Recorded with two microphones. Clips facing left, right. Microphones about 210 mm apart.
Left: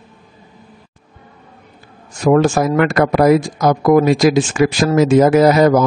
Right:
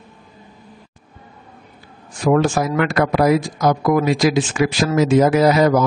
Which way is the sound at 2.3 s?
45° left (ahead or behind).